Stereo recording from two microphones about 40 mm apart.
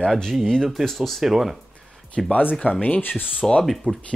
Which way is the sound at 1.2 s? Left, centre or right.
Centre.